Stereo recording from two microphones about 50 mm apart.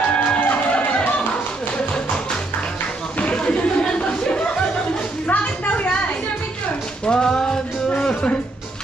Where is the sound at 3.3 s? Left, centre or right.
Centre.